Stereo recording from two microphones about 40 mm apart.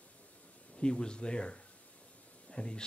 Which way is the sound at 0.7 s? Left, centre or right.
Left.